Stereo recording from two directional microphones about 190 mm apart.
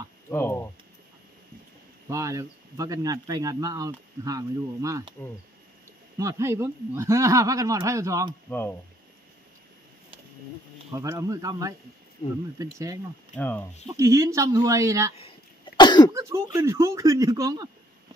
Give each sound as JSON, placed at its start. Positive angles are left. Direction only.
{"t": 0.3, "sound": "speech", "side_deg": 10}
{"t": 2.0, "sound": "speech", "side_deg": -15}
{"t": 6.1, "sound": "speech", "side_deg": -15}
{"t": 8.5, "sound": "speech", "side_deg": 10}
{"t": 10.9, "sound": "speech", "side_deg": -15}
{"t": 12.7, "sound": "speech", "side_deg": -15}
{"t": 13.4, "sound": "speech", "side_deg": 10}
{"t": 13.8, "sound": "speech", "side_deg": -15}
{"t": 15.8, "sound": "cough", "side_deg": 20}
{"t": 16.1, "sound": "speech", "side_deg": -15}